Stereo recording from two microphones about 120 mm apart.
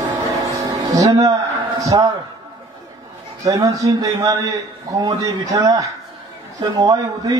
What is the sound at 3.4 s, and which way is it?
A man's voice, 25° right (ahead or behind).